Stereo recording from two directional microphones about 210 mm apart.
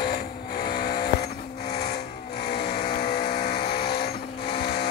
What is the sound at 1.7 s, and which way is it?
Vehicle, 50° left (ahead or behind).